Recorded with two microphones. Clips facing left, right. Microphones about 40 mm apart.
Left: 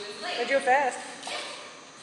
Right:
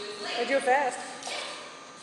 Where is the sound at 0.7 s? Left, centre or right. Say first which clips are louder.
Left 1 dB; left.